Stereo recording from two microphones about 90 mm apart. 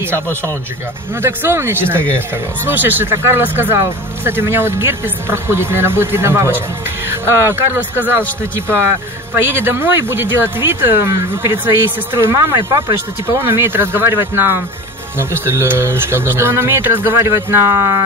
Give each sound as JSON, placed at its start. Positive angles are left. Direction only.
{"t": 0.0, "sound": "speech", "side_deg": -25}
{"t": 12.5, "sound": "speech", "side_deg": -50}
{"t": 13.4, "sound": "speech", "side_deg": -25}